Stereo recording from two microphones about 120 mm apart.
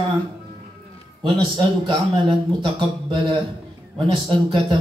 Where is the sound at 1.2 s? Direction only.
40° right (ahead or behind).